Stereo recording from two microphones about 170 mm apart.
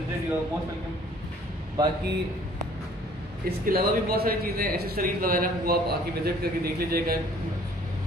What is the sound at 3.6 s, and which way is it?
A man's voice, 60° right (ahead or behind).